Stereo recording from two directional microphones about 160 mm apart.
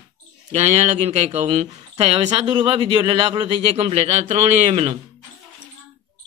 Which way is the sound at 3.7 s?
40° right (ahead or behind).